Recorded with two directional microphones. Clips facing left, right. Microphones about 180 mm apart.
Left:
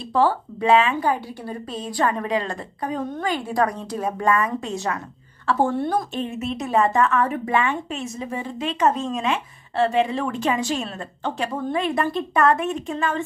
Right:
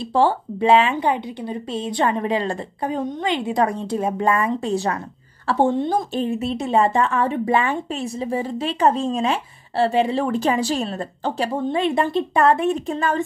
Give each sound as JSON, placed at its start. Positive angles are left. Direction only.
{"t": 0.0, "sound": "speech", "side_deg": -25}
{"t": 5.7, "sound": "a woman's voice", "side_deg": -20}